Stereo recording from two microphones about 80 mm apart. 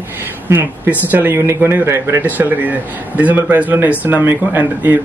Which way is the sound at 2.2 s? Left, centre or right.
Right.